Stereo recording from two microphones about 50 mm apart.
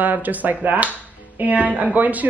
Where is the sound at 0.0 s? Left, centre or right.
Right.